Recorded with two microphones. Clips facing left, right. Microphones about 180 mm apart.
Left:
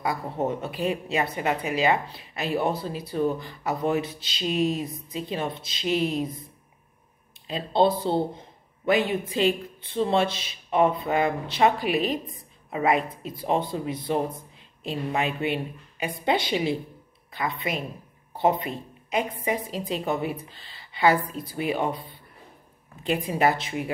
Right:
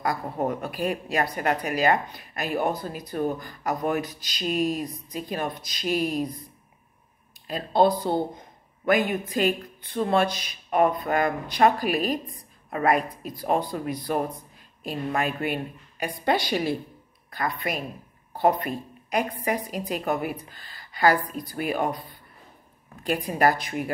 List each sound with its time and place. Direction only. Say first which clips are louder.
0.1 s speech: even; 25° left (ahead or behind)
7.5 s speech: right 1 dB; 25° left (ahead or behind)
23.0 s speech: left 1 dB; 20° left (ahead or behind)